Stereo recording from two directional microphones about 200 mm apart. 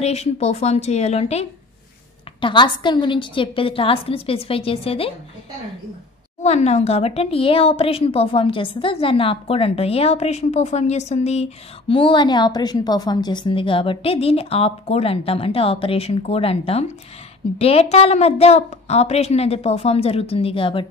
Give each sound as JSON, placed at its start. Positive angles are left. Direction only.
{"t": 0.0, "sound": "a woman's voice", "side_deg": 30}
{"t": 6.4, "sound": "a woman's voice", "side_deg": 35}